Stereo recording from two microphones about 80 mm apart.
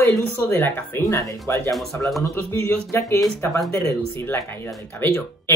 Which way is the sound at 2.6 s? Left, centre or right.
Left.